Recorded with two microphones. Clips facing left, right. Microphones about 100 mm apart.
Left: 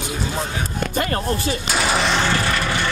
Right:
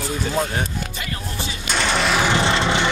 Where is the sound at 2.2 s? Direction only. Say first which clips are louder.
Right 2 dB; 20° right (ahead or behind).